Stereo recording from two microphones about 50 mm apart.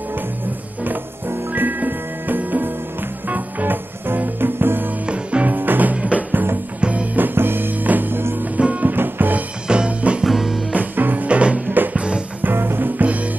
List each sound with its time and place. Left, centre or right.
0.8 s music: right
5.0 s music: right
6.3 s music: right
6.8 s music: right
7.2 s music: right
8.5 s music: right
8.9 s music: right
9.7 s music: right
10.2 s music: centre
10.7 s music: right
11.2 s music: right
13.0 s music: right